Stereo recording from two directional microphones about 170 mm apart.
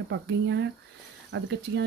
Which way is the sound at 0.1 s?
90° right.